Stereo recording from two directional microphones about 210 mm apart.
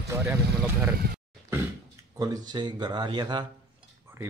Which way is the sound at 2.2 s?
20° right (ahead or behind).